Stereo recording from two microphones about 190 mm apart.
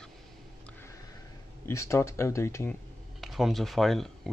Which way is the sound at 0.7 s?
10° left (ahead or behind).